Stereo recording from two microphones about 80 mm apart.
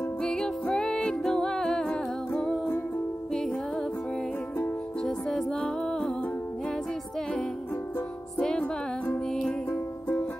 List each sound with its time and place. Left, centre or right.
0.2 s music: centre
5.0 s music: centre
8.4 s music: centre
9.7 s music: left